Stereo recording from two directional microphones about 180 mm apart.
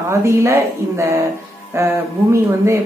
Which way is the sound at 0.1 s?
15° right (ahead or behind).